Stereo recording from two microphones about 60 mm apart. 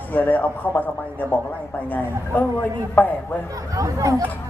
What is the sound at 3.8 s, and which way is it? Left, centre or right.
Speech, right.